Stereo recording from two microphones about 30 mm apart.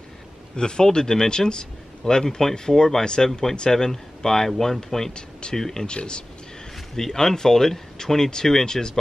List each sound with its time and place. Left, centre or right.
0.6 s speech: left
5.1 s speech: left
5.6 s speech: centre
5.9 s speech: left
7.0 s speech: centre